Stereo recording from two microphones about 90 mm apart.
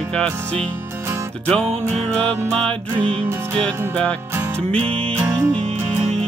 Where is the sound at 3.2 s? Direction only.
30° right (ahead or behind).